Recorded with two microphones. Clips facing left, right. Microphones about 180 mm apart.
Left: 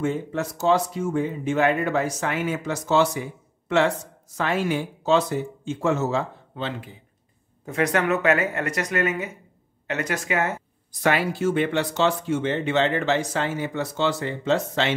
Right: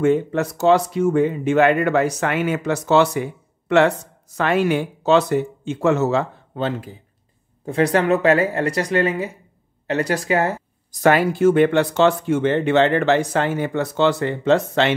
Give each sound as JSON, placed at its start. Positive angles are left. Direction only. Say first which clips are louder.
{"t": 0.0, "sound": "speech", "louder": "right 8 dB", "side_deg": -65}
{"t": 6.5, "sound": "speech", "louder": "right 8 dB", "side_deg": -45}
{"t": 7.6, "sound": "speech", "louder": "right 5 dB", "side_deg": -30}